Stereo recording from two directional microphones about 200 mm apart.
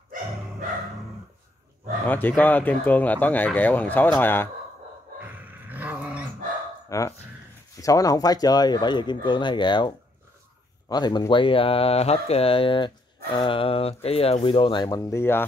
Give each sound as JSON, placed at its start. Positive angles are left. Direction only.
{"t": 2.0, "sound": "speech", "side_deg": 10}
{"t": 5.2, "sound": "a sound", "side_deg": -10}
{"t": 6.9, "sound": "speech", "side_deg": 15}